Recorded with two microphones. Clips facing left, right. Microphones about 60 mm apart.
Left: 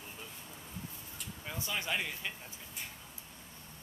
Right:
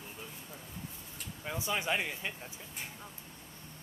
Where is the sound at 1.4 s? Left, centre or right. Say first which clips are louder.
Right 4 dB; centre.